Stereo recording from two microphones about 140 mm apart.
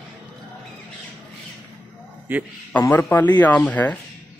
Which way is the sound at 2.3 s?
15° right (ahead or behind).